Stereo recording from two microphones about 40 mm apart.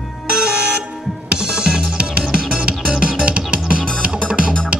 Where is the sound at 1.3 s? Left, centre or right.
Centre.